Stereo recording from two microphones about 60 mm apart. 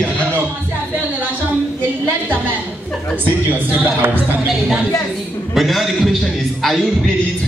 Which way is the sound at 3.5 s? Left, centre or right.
Right.